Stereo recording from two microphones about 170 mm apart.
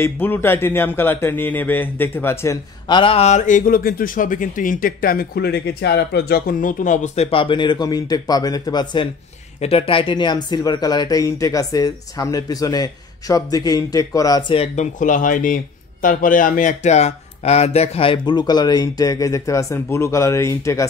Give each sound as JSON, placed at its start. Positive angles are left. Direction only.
{"t": 0.0, "sound": "speech", "side_deg": 10}
{"t": 3.0, "sound": "speech", "side_deg": 35}
{"t": 14.5, "sound": "speech", "side_deg": 35}
{"t": 15.0, "sound": "speech", "side_deg": 50}